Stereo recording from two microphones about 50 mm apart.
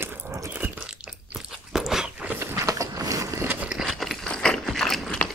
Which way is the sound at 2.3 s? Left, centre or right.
Right.